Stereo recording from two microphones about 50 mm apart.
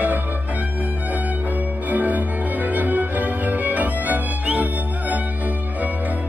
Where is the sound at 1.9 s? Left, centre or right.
Right.